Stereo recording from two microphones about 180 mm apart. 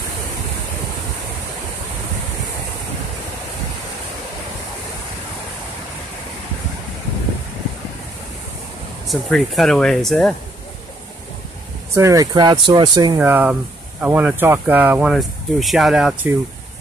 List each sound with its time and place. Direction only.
9.0 s speech: centre (ahead or behind)
11.9 s speech: 15° right (ahead or behind)
13.2 s speech: 10° right (ahead or behind)